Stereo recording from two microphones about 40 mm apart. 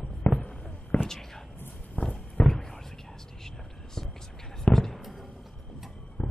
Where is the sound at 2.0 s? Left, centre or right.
Left.